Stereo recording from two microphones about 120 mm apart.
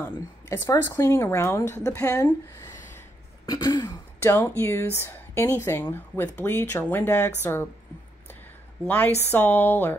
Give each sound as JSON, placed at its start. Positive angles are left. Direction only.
{"t": 0.5, "sound": "a woman's voice", "side_deg": 25}
{"t": 3.4, "sound": "throat clearing", "side_deg": 30}
{"t": 4.2, "sound": "a woman's voice", "side_deg": 20}
{"t": 8.8, "sound": "speech", "side_deg": 15}